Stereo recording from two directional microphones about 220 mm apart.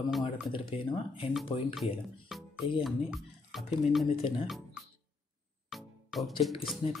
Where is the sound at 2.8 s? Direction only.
Centre (ahead or behind).